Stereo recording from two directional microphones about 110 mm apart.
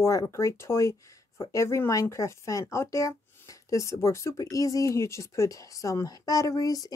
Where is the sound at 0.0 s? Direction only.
25° left (ahead or behind).